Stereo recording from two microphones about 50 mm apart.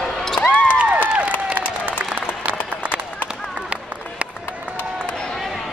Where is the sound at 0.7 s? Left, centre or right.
Right.